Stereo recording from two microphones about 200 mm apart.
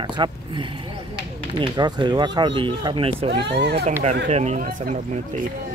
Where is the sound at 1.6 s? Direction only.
20° right (ahead or behind).